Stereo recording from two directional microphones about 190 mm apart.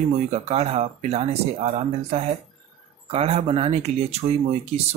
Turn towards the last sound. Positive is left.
turn(degrees=-35)  # may be behind; listen again after turning